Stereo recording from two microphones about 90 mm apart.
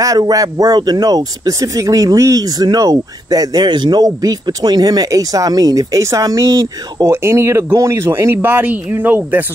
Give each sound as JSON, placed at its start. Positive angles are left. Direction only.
{"t": 0.0, "sound": "speech", "side_deg": -40}